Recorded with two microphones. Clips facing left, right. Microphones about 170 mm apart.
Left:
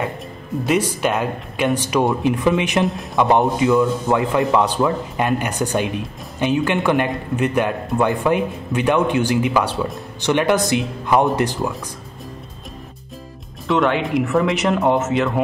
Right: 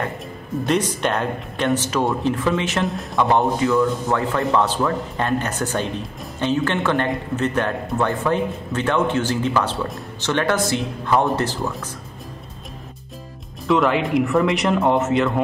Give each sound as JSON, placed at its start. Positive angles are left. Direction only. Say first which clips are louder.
{"t": 0.7, "sound": "speech", "louder": "left 2 dB", "side_deg": 10}
{"t": 13.7, "sound": "speech", "louder": "even", "side_deg": 0}